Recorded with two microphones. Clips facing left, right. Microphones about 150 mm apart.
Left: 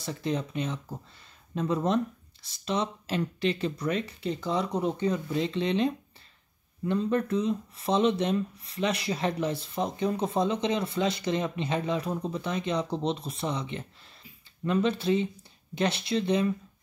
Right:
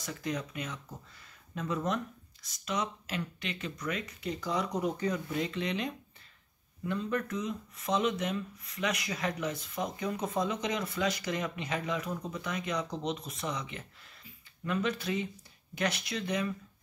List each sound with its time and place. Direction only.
0.0 s speech: 30° left (ahead or behind)